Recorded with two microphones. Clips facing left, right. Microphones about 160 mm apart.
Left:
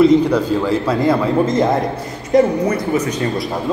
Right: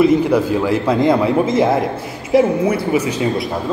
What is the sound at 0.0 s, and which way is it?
Speech, 10° right (ahead or behind).